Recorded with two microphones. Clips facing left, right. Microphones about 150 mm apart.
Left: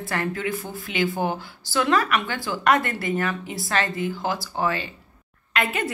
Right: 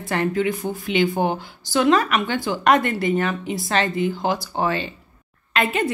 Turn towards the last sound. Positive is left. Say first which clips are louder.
# right 4 dB
turn(degrees=-25)  # may be behind; listen again after turning